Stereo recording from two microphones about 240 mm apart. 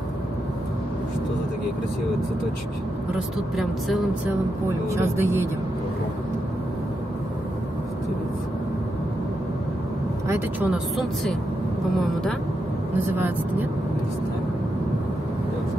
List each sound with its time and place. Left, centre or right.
3.5 s speech: centre
10.2 s speech: centre